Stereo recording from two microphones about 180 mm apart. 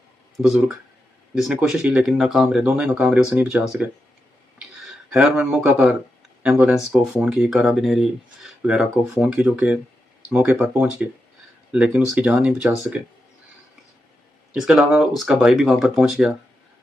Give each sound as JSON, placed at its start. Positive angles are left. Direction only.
{"t": 0.4, "sound": "speech", "side_deg": 0}
{"t": 14.5, "sound": "speech", "side_deg": 0}